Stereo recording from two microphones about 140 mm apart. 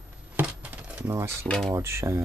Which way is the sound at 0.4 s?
10° right (ahead or behind).